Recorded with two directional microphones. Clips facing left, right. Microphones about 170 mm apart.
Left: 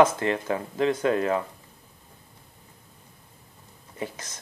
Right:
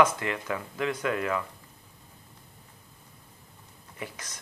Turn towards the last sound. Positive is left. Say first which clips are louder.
# left 5 dB
turn(degrees=25)  # may be behind; listen again after turning